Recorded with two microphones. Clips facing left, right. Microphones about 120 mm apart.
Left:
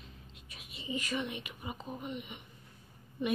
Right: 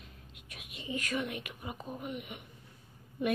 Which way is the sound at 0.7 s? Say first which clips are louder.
Even; 55° right (ahead or behind).